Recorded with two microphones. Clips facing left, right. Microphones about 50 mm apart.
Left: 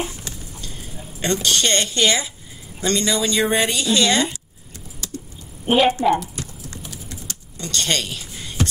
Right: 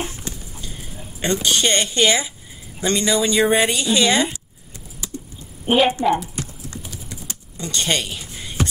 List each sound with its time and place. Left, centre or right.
1.2 s speech: centre
5.0 s a sound: centre
5.7 s a woman's voice: centre
6.8 s typing: centre